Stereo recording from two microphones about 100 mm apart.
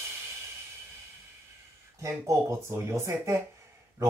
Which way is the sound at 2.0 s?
30° right (ahead or behind).